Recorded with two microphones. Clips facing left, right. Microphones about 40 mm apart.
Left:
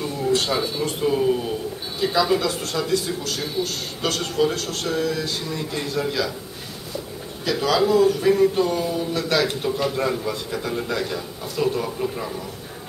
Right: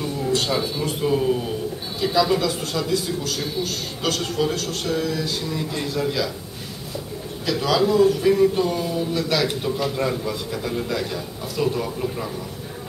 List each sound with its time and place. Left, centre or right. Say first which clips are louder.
0.0 s speech: left 1 dB; centre
7.4 s speech: even; centre